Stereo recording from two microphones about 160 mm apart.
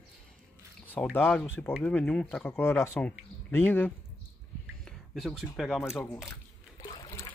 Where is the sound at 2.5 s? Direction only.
15° left (ahead or behind).